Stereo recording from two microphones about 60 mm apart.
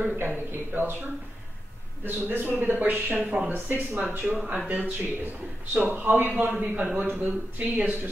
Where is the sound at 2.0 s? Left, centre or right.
Right.